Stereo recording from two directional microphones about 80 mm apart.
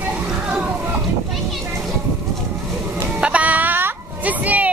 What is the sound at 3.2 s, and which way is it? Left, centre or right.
Music, centre.